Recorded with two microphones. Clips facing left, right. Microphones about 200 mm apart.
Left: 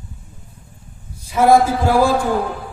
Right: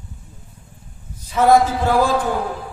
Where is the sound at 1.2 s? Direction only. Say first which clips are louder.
Left 1 dB; 10° left (ahead or behind).